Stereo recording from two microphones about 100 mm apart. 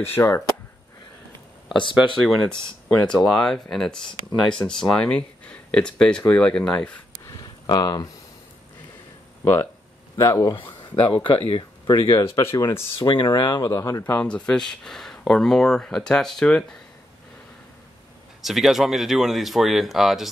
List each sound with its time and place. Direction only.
0.0 s speech: 25° left (ahead or behind)
2.2 s speech: 5° left (ahead or behind)
7.6 s speech: 45° left (ahead or behind)
9.4 s speech: 25° left (ahead or behind)
10.1 s speech: 35° left (ahead or behind)
10.5 s speech: 55° left (ahead or behind)
12.0 s speech: 50° left (ahead or behind)
12.3 s speech: 25° left (ahead or behind)
13.1 s speech: 50° left (ahead or behind)
13.5 s speech: 40° left (ahead or behind)
14.0 s speech: 15° left (ahead or behind)
18.4 s speech: 5° right (ahead or behind)